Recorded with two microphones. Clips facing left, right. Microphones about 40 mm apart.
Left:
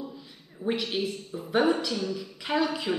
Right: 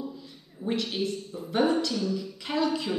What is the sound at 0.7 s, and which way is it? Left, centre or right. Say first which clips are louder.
Speech: even; centre.